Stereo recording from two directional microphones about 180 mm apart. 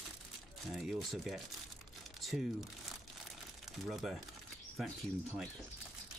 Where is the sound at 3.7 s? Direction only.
Centre (ahead or behind).